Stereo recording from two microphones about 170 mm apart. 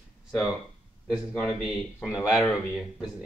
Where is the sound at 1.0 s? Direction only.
5° right (ahead or behind).